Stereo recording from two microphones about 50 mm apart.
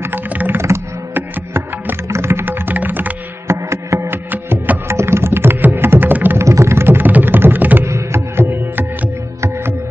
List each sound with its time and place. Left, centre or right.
1.1 s music: right
2.0 s music: right
2.4 s music: right
3.4 s music: right
4.1 s music: right
4.8 s music: right
6.3 s a sound: right
7.1 s a sound: right
7.3 s computer keyboard: right
7.8 s music: right
8.5 s music: right